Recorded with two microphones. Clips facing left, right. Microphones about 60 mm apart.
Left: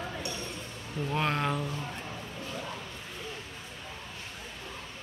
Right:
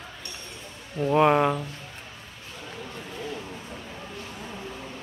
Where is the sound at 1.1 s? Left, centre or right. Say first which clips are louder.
Right 10 dB; centre.